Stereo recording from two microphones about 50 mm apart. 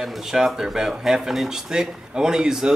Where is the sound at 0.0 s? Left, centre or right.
Centre.